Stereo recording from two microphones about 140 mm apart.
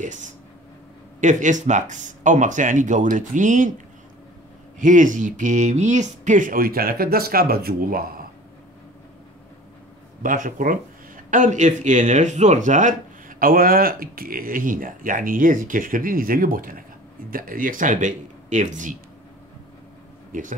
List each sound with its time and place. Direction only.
0.0 s speech: 60° right (ahead or behind)
4.7 s speech: 65° right (ahead or behind); by 8.3 s 90° right
10.2 s speech: 70° right (ahead or behind)
20.3 s speech: 75° right (ahead or behind)